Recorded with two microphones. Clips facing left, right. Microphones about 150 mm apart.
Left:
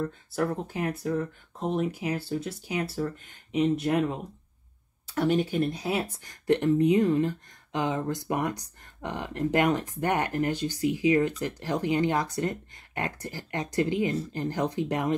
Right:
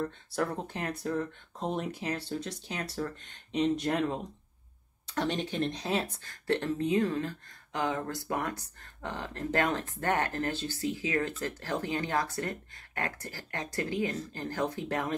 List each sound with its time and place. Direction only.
0.3 s speech: 5° left (ahead or behind); by 15.1 s 20° left (ahead or behind)